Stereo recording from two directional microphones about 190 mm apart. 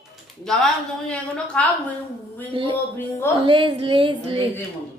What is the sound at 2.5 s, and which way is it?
Speech, 25° right (ahead or behind).